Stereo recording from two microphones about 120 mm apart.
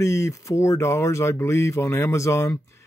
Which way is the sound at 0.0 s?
25° left (ahead or behind).